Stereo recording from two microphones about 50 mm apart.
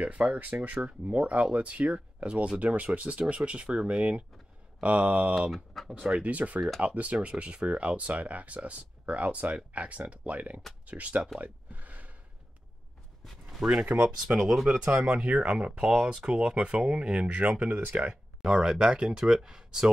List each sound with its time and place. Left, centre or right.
0.0 s speech: right
5.9 s speech: centre
6.1 s speech: right
11.3 s a sound: right
13.6 s speech: centre
14.0 s speech: right
17.4 s speech: right
18.4 s speech: centre